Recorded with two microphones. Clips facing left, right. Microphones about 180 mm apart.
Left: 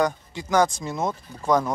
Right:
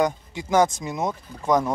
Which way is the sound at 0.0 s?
20° right (ahead or behind).